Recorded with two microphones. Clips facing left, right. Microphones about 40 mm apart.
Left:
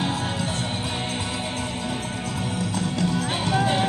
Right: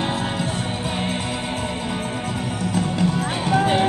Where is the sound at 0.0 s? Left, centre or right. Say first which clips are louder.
Right 2 dB; right.